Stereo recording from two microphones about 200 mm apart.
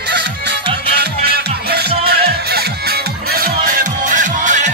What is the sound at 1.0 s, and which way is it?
Music, 55° right (ahead or behind).